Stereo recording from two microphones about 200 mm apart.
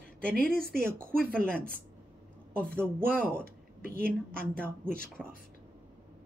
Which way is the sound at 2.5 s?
5° left (ahead or behind).